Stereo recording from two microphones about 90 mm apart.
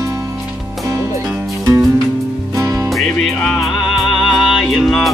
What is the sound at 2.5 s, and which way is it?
Music, 40° right (ahead or behind).